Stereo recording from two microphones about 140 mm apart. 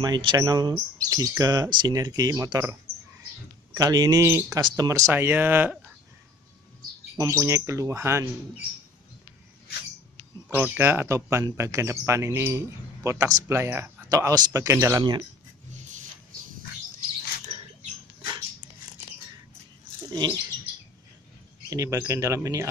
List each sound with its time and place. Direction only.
0.0 s speech: 30° right (ahead or behind)
3.7 s speech: 25° right (ahead or behind)
4.6 s speech: 30° right (ahead or behind)
7.2 s speech: 20° right (ahead or behind)
10.5 s speech: 15° right (ahead or behind)
14.0 s speech: 25° right (ahead or behind)
20.1 s bird: 30° right (ahead or behind)
21.6 s speech: 25° right (ahead or behind)